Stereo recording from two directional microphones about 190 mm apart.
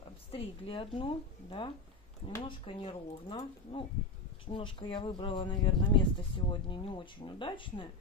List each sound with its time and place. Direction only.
0.3 s speech: 30° left (ahead or behind)